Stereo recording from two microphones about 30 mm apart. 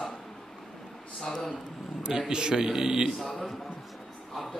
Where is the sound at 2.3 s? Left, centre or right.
Right.